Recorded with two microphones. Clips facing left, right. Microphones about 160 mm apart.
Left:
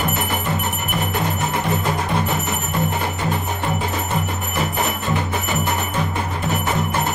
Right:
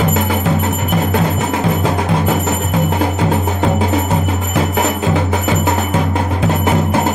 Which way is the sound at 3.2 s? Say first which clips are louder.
Right 8 dB; 90° right.